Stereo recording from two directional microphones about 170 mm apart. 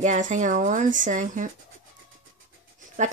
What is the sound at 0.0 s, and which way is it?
Speech, 45° right (ahead or behind).